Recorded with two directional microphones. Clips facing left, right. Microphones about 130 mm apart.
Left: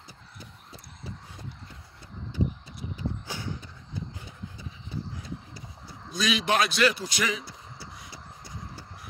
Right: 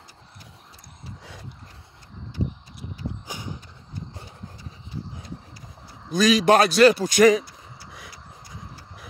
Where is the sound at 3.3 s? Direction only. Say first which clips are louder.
Even; 15° right (ahead or behind).